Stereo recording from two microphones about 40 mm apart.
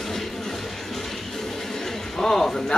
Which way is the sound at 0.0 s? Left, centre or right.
Centre.